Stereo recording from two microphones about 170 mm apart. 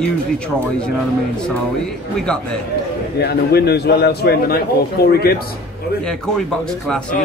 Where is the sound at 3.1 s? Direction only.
70° left (ahead or behind).